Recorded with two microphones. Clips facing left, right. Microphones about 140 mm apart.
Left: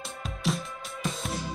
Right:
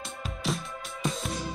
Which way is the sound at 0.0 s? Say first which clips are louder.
Left 2 dB; centre (ahead or behind).